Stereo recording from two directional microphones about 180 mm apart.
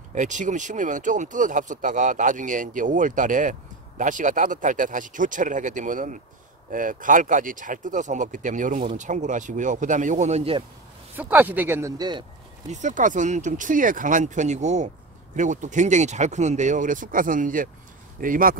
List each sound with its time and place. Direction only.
0.1 s speech: 45° right (ahead or behind)
11.1 s a man's voice: 10° right (ahead or behind)
12.6 s speech: 40° right (ahead or behind)